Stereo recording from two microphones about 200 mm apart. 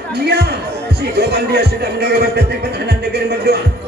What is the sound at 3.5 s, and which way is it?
Speech, 55° right (ahead or behind).